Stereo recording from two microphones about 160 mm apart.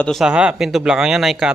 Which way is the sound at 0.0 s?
Centre (ahead or behind).